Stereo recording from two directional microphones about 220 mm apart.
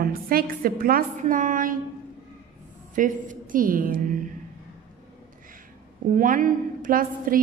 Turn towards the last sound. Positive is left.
turn(degrees=-40)  # may be behind; listen again after turning